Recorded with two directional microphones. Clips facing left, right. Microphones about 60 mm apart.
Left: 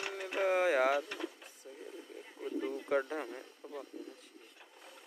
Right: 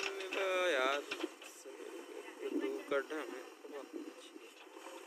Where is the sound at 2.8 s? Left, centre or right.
Left.